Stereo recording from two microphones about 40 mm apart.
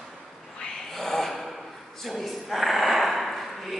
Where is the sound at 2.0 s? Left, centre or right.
Centre.